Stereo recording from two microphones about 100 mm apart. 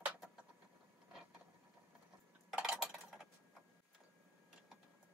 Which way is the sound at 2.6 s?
5° right (ahead or behind).